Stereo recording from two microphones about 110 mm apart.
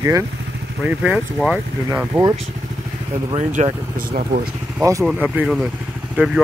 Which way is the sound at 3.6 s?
90° right.